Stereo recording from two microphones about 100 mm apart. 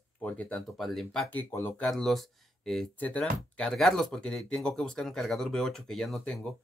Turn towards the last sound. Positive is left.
turn(degrees=5)  # may be behind; listen again after turning